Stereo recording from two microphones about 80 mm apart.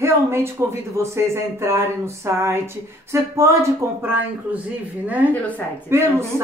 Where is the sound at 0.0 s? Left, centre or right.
Right.